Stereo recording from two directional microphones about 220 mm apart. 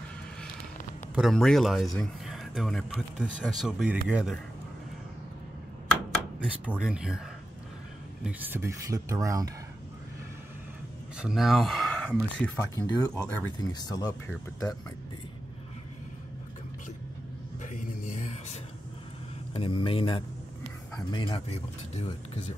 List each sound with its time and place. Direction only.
1.1 s speech: centre (ahead or behind)
6.4 s speech: 5° right (ahead or behind)
8.3 s speech: 10° right (ahead or behind)
11.1 s speech: centre (ahead or behind); by 14.3 s 15° left (ahead or behind)
17.6 s music: 35° left (ahead or behind)
18.1 s a sound: 30° left (ahead or behind)
19.5 s speech: 25° left (ahead or behind)